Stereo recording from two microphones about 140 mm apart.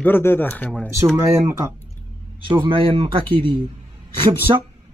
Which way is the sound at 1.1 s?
20° right (ahead or behind).